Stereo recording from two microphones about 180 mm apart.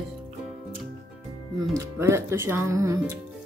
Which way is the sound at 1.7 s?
15° right (ahead or behind).